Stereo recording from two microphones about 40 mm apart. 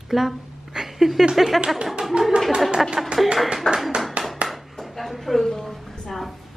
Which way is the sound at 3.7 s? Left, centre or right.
Centre.